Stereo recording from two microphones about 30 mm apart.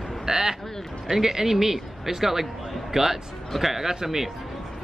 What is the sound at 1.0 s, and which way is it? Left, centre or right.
Speech, centre.